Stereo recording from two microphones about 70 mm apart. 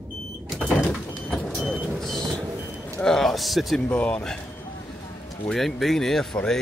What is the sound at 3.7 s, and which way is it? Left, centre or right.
Speech, centre.